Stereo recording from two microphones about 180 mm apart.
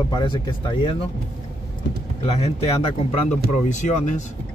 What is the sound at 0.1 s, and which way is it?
Speech, 25° left (ahead or behind).